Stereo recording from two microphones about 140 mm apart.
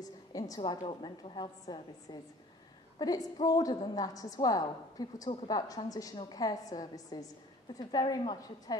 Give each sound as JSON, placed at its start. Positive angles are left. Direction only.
{"t": 0.0, "sound": "a woman's voice", "side_deg": 25}